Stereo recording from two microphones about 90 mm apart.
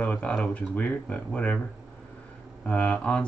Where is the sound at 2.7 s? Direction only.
15° left (ahead or behind).